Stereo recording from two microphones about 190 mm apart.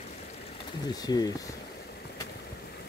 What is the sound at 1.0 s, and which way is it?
Speech, 20° left (ahead or behind).